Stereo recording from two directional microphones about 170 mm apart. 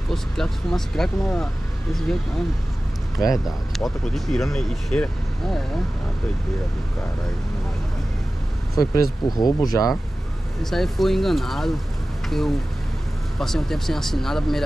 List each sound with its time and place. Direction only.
0.1 s speech: centre (ahead or behind)
3.2 s speech: 20° left (ahead or behind)
3.7 s speech: centre (ahead or behind)
8.7 s speech: 20° left (ahead or behind)
10.6 s speech: centre (ahead or behind)
13.4 s speech: centre (ahead or behind)